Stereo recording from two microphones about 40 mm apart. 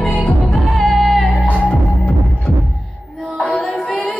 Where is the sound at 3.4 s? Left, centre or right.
Left.